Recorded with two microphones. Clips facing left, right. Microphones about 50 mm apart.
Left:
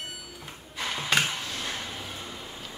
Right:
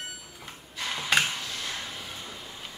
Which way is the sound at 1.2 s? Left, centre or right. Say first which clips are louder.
Left 1 dB; centre.